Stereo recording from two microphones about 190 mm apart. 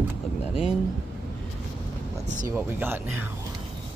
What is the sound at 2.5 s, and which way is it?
Speech, 10° right (ahead or behind).